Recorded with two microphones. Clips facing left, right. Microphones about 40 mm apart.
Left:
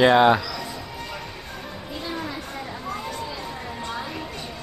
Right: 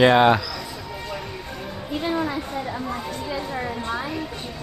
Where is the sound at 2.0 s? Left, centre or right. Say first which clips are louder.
Right 7 dB; right.